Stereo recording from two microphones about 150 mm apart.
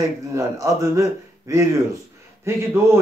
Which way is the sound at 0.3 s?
20° right (ahead or behind).